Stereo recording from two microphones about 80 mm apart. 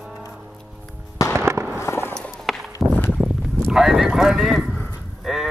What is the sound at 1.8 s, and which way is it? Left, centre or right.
Fireworks, left.